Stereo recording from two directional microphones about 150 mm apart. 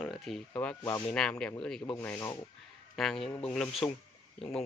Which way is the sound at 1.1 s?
5° left (ahead or behind).